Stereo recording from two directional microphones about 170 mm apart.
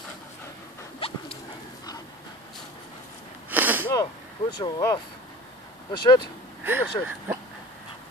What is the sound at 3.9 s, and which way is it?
Vehicle, 25° left (ahead or behind).